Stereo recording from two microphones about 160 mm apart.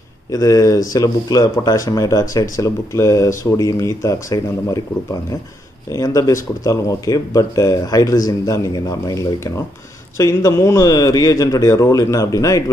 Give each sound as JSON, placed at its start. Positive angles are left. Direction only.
{"t": 0.3, "sound": "speech", "side_deg": 20}
{"t": 5.9, "sound": "speech", "side_deg": 20}